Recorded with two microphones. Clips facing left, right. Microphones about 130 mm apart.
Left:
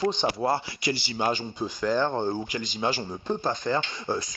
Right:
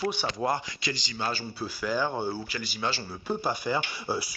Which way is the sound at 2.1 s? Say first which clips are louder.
Left 4 dB; 20° left (ahead or behind).